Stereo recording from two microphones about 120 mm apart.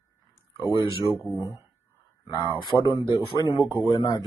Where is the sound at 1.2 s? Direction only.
25° right (ahead or behind).